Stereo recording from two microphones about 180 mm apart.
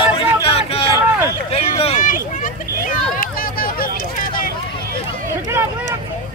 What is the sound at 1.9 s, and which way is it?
Vehicle, 45° left (ahead or behind).